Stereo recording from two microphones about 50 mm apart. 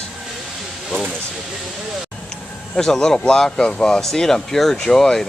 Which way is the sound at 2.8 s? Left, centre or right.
Centre.